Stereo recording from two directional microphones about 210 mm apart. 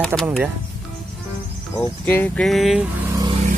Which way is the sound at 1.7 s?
10° left (ahead or behind).